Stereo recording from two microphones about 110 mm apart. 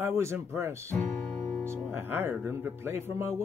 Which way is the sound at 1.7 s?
20° right (ahead or behind).